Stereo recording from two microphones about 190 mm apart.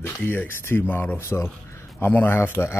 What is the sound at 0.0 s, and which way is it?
Speech, 10° left (ahead or behind).